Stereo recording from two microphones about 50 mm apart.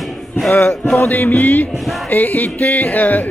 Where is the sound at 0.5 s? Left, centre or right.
Left.